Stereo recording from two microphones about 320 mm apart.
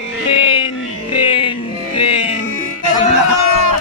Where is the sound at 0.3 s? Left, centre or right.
Centre.